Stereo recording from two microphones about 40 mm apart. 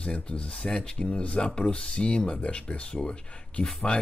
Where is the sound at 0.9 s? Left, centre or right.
Left.